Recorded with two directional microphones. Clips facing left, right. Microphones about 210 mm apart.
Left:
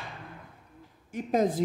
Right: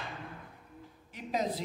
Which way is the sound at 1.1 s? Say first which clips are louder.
Left 8 dB; 50° left (ahead or behind).